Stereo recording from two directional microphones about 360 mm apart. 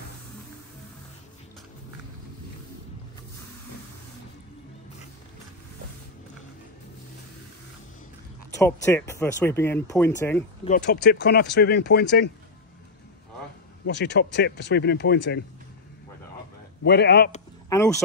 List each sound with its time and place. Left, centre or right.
8.5 s speech: centre
10.7 s speech: left
13.8 s speech: left
16.8 s speech: left
17.6 s speech: centre